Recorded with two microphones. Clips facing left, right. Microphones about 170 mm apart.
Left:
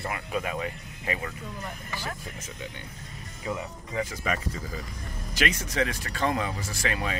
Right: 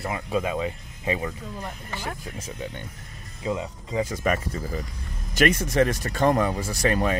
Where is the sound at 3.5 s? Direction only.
20° right (ahead or behind).